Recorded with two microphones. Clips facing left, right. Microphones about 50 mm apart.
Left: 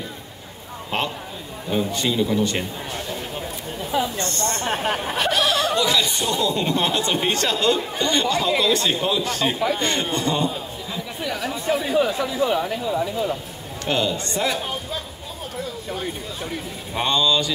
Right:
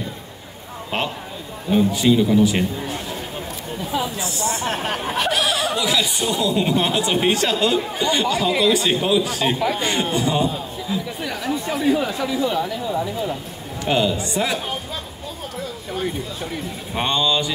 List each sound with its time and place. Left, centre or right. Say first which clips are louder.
1.7 s speech: right 6 dB; centre
13.8 s speech: right 3 dB; centre
15.9 s speech: right 3 dB; centre
16.9 s speech: even; centre